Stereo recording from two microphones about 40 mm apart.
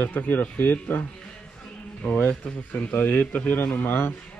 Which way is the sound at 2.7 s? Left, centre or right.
Left.